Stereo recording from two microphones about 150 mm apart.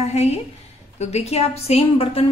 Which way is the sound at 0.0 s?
45° left (ahead or behind).